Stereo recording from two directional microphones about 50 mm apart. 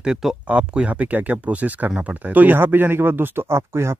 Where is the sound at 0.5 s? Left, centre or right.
Right.